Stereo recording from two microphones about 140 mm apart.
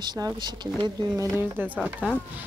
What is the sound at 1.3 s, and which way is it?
Speech, 15° right (ahead or behind).